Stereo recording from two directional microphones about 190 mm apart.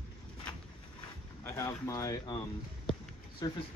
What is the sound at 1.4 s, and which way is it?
Speech, 15° left (ahead or behind).